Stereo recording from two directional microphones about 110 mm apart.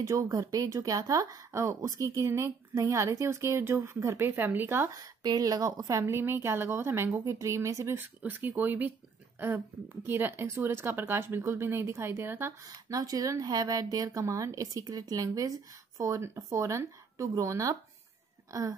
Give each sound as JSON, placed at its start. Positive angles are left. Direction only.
{"t": 0.0, "sound": "a woman's voice", "side_deg": -30}
{"t": 4.9, "sound": "a woman's voice", "side_deg": -35}
{"t": 10.0, "sound": "a woman's voice", "side_deg": -20}
{"t": 12.6, "sound": "a woman's voice", "side_deg": -35}
{"t": 18.5, "sound": "a sound", "side_deg": -30}